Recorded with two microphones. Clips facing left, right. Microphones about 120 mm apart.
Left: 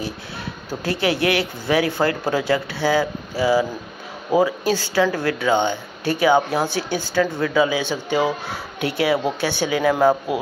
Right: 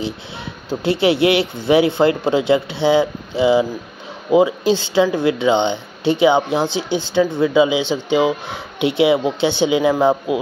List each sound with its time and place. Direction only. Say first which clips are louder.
0.7 s speech: right 6 dB; 25° right (ahead or behind)